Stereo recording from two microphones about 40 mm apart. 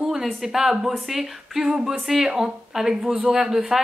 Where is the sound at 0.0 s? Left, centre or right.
Centre.